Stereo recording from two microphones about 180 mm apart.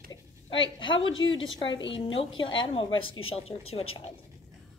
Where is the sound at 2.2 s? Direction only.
30° left (ahead or behind).